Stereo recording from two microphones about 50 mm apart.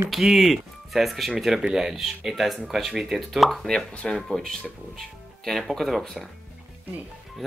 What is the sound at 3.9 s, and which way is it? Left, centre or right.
Speech, left.